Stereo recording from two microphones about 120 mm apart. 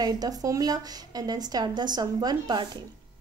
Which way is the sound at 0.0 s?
30° right (ahead or behind).